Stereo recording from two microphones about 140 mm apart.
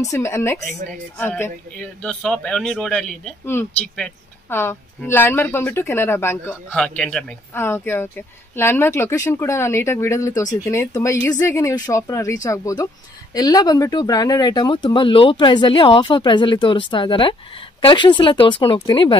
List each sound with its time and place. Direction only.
0.0 s speech: 20° left (ahead or behind)
6.8 s speech: 5° left (ahead or behind)
7.5 s speech: 15° left (ahead or behind); by 19.1 s 35° left (ahead or behind)